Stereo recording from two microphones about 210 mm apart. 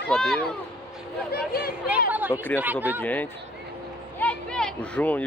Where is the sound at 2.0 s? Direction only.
10° right (ahead or behind).